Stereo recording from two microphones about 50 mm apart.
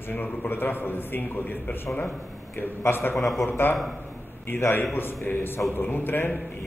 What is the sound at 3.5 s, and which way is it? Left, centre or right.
A man's voice, left.